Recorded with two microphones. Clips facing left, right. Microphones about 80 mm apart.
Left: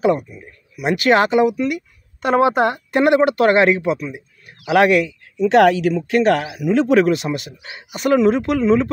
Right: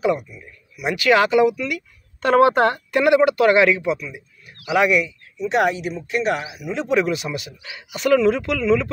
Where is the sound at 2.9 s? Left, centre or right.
Left.